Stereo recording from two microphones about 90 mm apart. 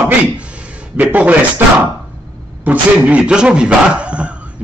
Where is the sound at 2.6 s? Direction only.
15° right (ahead or behind).